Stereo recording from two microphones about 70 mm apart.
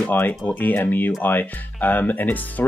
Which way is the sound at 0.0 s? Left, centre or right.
Left.